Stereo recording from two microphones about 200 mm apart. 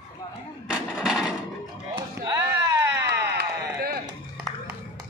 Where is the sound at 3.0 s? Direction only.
55° right (ahead or behind).